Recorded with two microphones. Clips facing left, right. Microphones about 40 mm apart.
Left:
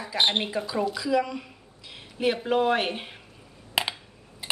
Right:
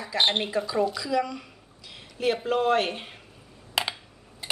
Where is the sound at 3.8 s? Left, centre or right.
Centre.